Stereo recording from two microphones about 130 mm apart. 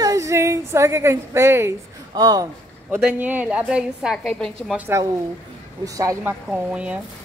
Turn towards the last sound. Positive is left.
turn(degrees=-10)  # may be behind; listen again after turning